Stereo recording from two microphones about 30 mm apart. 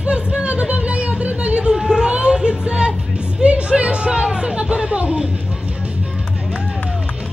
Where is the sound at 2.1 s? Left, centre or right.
Right.